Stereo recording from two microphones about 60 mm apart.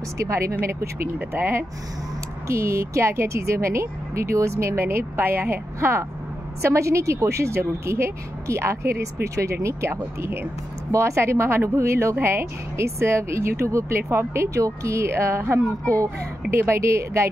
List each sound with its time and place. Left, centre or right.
0.2 s speech: right
1.0 s speech: right
2.4 s speech: right
10.9 s speech: right